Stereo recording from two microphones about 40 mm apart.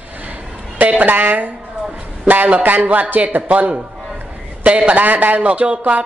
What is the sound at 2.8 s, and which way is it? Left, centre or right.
Speech, right.